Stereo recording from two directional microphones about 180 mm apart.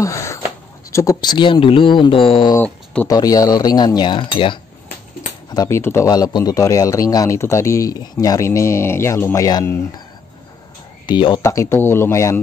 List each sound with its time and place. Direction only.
0.0 s a sound: 15° left (ahead or behind)
0.9 s speech: 20° left (ahead or behind)
2.5 s a man's voice: 10° left (ahead or behind)
11.1 s a man's voice: 25° left (ahead or behind)